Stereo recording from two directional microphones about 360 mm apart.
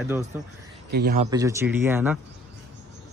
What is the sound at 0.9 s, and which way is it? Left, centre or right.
Speech, right.